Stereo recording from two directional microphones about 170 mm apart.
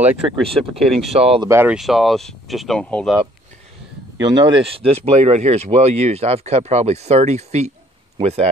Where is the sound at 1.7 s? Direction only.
Centre (ahead or behind).